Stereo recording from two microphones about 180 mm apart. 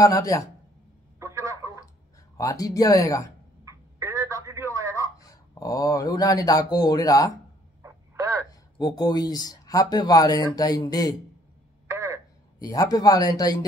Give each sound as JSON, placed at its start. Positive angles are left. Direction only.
{"t": 0.0, "sound": "speech", "side_deg": 20}
{"t": 1.2, "sound": "a sound", "side_deg": -15}
{"t": 2.3, "sound": "speech", "side_deg": 20}
{"t": 3.6, "sound": "telephone", "side_deg": -15}
{"t": 5.2, "sound": "speech", "side_deg": 20}
{"t": 7.8, "sound": "a sound", "side_deg": -20}
{"t": 8.5, "sound": "speech", "side_deg": 20}
{"t": 11.9, "sound": "telephone", "side_deg": -15}
{"t": 12.5, "sound": "speech", "side_deg": 20}